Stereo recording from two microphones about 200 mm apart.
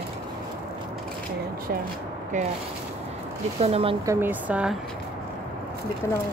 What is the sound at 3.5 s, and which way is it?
Speech, 30° right (ahead or behind).